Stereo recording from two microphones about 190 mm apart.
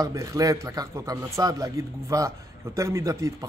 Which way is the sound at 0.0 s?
15° right (ahead or behind).